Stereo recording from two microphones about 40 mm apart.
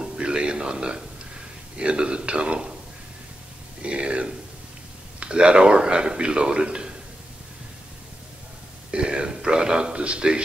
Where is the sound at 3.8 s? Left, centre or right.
Right.